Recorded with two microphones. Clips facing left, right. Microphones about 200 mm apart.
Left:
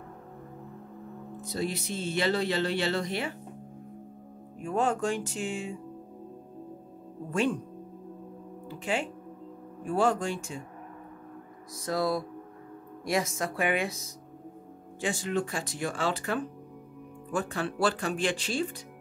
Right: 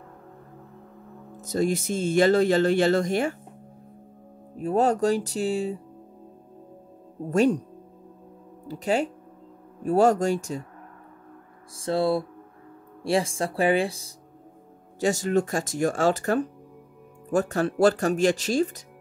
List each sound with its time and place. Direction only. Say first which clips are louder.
1.4 s speech: right 8 dB; 45° right (ahead or behind)
4.6 s speech: right 6 dB; 35° right (ahead or behind)
7.2 s speech: right 7 dB; 40° right (ahead or behind)
8.6 s speech: right 7 dB; 40° right (ahead or behind)
11.7 s speech: right 5 dB; 30° right (ahead or behind)
15.0 s speech: right 7 dB; 40° right (ahead or behind)